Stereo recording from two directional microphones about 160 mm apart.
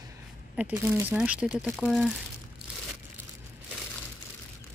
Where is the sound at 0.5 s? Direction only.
10° right (ahead or behind).